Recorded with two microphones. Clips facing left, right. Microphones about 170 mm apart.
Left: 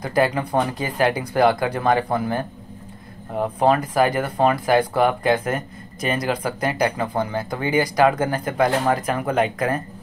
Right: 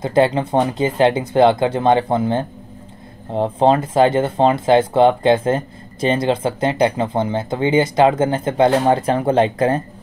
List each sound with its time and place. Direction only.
0.0 s speech: 25° right (ahead or behind)